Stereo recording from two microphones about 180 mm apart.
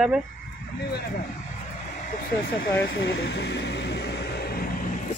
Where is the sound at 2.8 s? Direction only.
80° left; by 4.6 s 60° left (ahead or behind).